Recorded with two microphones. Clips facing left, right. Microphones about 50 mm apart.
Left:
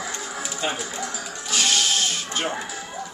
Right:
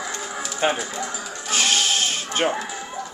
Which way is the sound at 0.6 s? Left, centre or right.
Right.